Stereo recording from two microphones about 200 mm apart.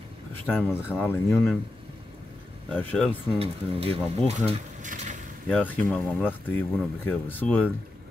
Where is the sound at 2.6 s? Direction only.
5° left (ahead or behind).